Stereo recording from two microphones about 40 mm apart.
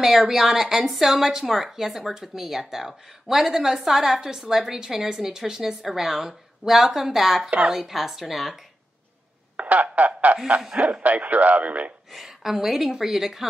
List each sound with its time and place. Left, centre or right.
0.0 s speech: centre
9.6 s a sound: right
10.7 s speech: right
12.1 s speech: centre